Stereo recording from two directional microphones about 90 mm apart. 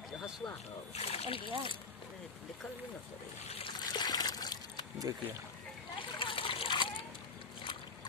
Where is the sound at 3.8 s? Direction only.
50° left (ahead or behind).